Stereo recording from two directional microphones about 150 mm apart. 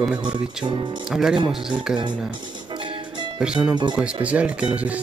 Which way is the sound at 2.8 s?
35° right (ahead or behind).